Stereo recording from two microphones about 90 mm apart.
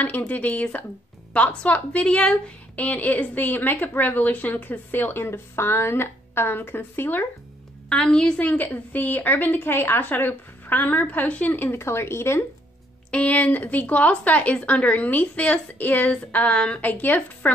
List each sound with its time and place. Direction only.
0.2 s a woman's voice: 20° left (ahead or behind)
7.9 s a woman's voice: 10° left (ahead or behind); by 12.4 s 30° left (ahead or behind)
13.1 s speech: 15° left (ahead or behind)